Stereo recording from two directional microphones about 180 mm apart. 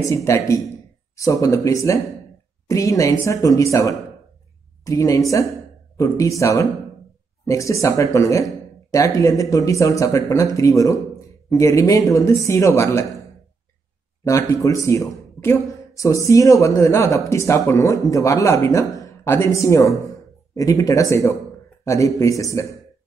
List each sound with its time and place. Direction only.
0.0 s speech: 15° left (ahead or behind)
14.2 s speech: 15° left (ahead or behind)